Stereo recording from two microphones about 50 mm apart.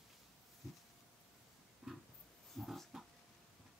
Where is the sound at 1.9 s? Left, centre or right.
Centre.